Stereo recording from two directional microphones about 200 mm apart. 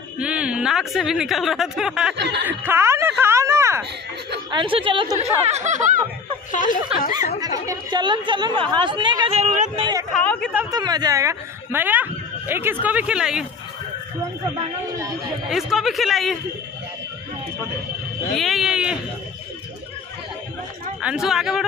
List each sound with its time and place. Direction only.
0.2 s a woman's voice: 5° right (ahead or behind)
2.1 s speech: 60° right (ahead or behind)
2.4 s speech: 10° right (ahead or behind)
4.5 s speech: 25° right (ahead or behind)
5.5 s speech: 35° right (ahead or behind)
6.5 s speech: 40° left (ahead or behind)
7.3 s speech: 20° right (ahead or behind); by 9.8 s 35° right (ahead or behind)
10.1 s a woman's voice: 5° left (ahead or behind)
10.7 s speech: 20° right (ahead or behind); by 13.5 s 5° right (ahead or behind)
15.5 s a woman's voice: centre (ahead or behind)
18.3 s a woman's voice: centre (ahead or behind)
21.0 s a woman's voice: 5° right (ahead or behind)